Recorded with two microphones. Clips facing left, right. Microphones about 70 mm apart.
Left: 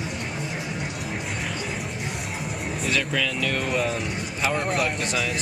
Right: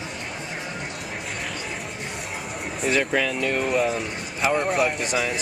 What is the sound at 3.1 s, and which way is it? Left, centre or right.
Speech, right.